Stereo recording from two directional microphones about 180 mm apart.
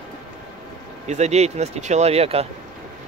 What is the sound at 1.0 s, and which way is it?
Speech, 40° right (ahead or behind).